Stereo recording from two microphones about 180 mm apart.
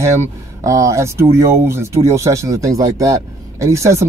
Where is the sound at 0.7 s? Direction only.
15° right (ahead or behind).